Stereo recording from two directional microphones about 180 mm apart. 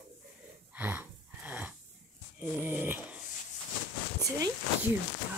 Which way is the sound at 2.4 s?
10° right (ahead or behind).